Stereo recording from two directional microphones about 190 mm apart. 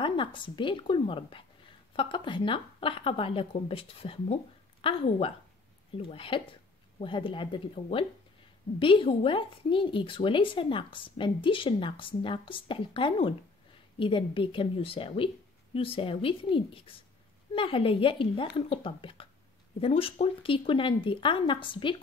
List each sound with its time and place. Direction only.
0.0 s a woman's voice: 25° left (ahead or behind)